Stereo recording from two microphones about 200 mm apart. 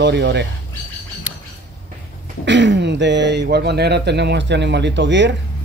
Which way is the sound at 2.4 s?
65° right (ahead or behind).